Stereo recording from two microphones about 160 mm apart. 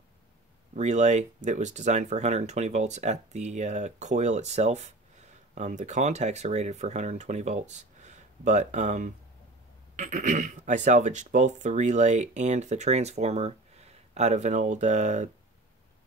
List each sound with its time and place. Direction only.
0.7 s speech: 45° right (ahead or behind)